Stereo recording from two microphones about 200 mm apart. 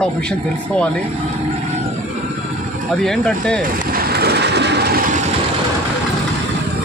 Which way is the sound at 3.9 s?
50° right (ahead or behind).